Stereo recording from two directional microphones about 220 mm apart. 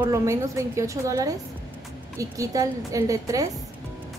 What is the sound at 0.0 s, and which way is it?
A woman's voice, 15° right (ahead or behind).